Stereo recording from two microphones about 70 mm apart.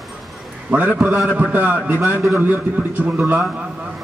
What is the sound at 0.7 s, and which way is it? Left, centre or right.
A man's voice, right.